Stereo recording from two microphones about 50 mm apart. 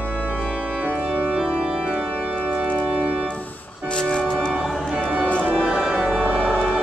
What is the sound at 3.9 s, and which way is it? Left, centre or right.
Music, centre.